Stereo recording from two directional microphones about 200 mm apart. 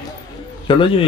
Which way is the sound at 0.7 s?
25° left (ahead or behind).